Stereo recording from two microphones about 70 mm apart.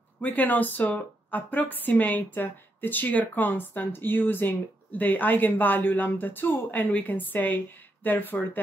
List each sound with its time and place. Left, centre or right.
0.2 s speech: left